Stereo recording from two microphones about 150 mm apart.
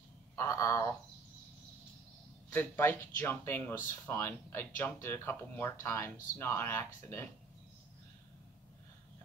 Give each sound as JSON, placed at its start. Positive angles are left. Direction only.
{"t": 0.4, "sound": "speech", "side_deg": 20}
{"t": 2.5, "sound": "speech", "side_deg": 10}